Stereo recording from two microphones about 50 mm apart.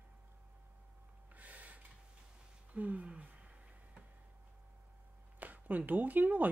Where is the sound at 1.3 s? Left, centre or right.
Right.